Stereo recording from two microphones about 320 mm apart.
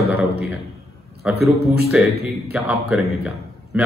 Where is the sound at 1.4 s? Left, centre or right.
Right.